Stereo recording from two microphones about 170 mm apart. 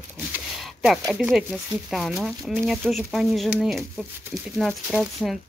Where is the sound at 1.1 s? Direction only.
Centre (ahead or behind).